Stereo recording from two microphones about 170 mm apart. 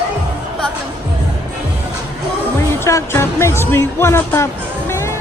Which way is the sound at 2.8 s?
15° left (ahead or behind).